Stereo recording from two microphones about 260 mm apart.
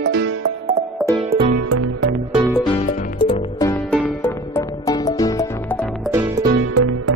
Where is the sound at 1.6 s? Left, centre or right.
Right.